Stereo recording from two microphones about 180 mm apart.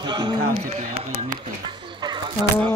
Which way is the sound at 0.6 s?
40° right (ahead or behind).